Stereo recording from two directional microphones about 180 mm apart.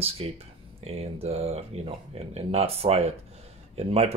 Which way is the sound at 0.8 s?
35° right (ahead or behind).